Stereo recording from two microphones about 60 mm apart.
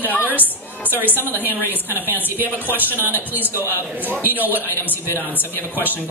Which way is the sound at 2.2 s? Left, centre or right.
Right.